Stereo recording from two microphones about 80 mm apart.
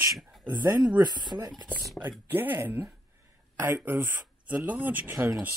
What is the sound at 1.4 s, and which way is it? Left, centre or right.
Speech, right.